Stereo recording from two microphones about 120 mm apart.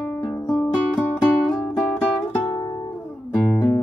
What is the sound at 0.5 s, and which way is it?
Music, 10° left (ahead or behind).